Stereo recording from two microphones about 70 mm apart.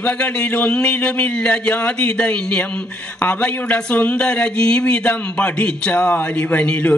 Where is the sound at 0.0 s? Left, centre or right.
Centre.